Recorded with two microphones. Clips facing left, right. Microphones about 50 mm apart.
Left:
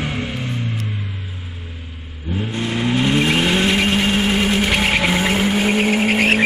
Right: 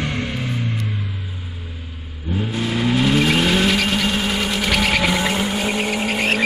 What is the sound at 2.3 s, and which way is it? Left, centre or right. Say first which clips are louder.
Vehicle: even; left.